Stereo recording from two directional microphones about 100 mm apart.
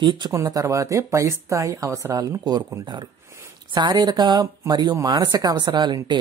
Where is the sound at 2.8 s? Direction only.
50° right (ahead or behind).